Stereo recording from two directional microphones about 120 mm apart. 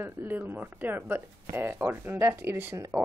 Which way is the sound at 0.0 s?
15° right (ahead or behind).